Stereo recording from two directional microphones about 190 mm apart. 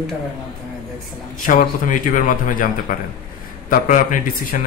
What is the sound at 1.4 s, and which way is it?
Speech, 45° left (ahead or behind).